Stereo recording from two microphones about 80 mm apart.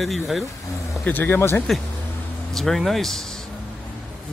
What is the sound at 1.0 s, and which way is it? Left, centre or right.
Speech, left.